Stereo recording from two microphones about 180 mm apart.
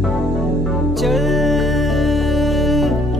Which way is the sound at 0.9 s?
Centre (ahead or behind).